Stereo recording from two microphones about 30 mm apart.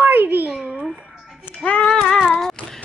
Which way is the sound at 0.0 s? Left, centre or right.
Right.